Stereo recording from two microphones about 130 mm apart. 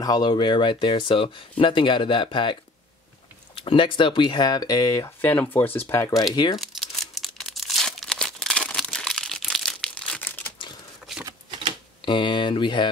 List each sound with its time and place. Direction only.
0.0 s speech: 30° left (ahead or behind)
3.5 s speech: 40° left (ahead or behind); by 6.2 s 25° left (ahead or behind)
6.3 s speech: 35° left (ahead or behind)
6.6 s crumpling: centre (ahead or behind)
12.0 s speech: 35° left (ahead or behind)